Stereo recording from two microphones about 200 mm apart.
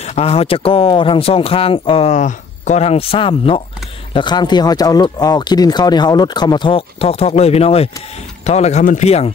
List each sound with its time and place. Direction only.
0.0 s speech: 30° left (ahead or behind)